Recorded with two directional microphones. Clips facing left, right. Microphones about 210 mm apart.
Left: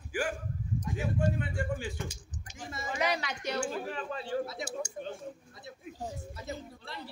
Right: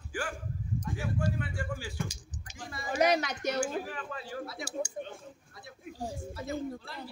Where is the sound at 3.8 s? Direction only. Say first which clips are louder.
Left 4 dB; 30° left (ahead or behind).